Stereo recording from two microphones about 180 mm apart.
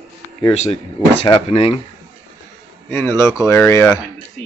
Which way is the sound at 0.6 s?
35° left (ahead or behind).